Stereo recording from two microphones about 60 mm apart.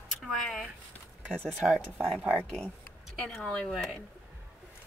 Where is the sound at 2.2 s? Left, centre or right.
Right.